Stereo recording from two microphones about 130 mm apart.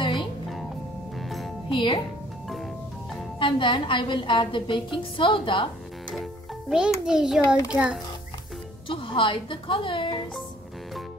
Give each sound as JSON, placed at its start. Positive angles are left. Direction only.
{"t": 0.0, "sound": "music", "side_deg": 40}
{"t": 1.7, "sound": "speech", "side_deg": 40}
{"t": 2.5, "sound": "music", "side_deg": 0}
{"t": 3.3, "sound": "a woman's voice", "side_deg": 40}
{"t": 6.7, "sound": "a child's voice", "side_deg": -5}
{"t": 8.8, "sound": "a woman's voice", "side_deg": 40}